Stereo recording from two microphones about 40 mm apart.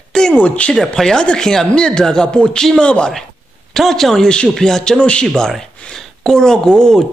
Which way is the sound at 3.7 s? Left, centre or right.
Centre.